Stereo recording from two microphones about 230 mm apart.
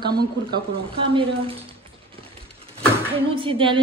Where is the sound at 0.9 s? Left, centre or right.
Right.